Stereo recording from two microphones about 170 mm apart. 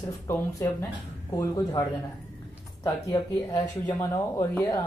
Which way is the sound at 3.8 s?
15° left (ahead or behind).